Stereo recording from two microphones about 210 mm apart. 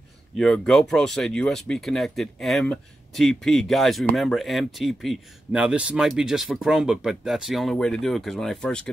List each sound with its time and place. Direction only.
0.4 s speech: centre (ahead or behind)